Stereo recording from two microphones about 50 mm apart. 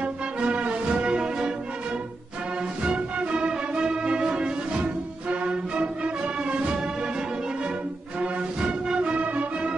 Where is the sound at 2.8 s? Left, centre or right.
Right.